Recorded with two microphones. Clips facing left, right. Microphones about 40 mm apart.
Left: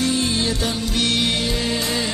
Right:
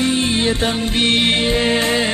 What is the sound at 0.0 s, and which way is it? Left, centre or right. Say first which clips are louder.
Music: right 4 dB; right.